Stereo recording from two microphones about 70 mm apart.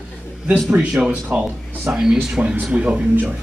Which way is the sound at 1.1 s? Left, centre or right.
Right.